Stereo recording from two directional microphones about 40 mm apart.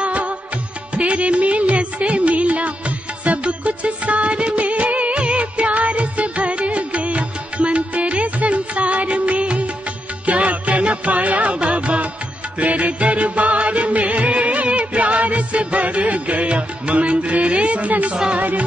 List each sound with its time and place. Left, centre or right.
0.0 s music: right
3.3 s music of bollywood: right
10.2 s music: right
18.1 s music: right